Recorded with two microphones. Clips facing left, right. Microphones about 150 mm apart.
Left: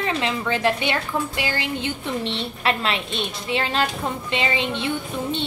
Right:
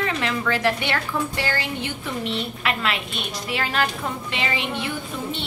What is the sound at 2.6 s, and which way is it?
A woman's voice, 30° left (ahead or behind).